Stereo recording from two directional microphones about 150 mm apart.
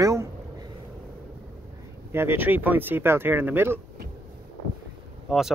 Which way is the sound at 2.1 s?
15° right (ahead or behind).